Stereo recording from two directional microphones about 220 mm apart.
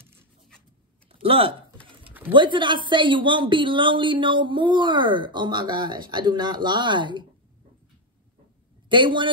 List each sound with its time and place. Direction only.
1.2 s speech: 25° right (ahead or behind)
1.9 s pigeon: 25° right (ahead or behind)
2.3 s speech: 20° right (ahead or behind)
8.8 s a man's voice: 20° right (ahead or behind)